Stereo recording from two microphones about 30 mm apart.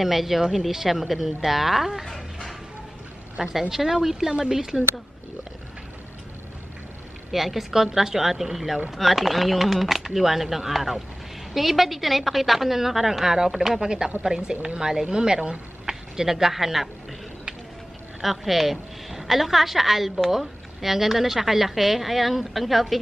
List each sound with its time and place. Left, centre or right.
0.0 s a woman's voice: centre
3.4 s a woman's voice: centre
7.2 s a woman's voice: centre
13.7 s speech: right; by 16.9 s centre
18.2 s a woman's voice: centre